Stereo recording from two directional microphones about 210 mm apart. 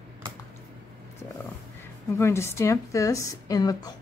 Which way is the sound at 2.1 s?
10° left (ahead or behind).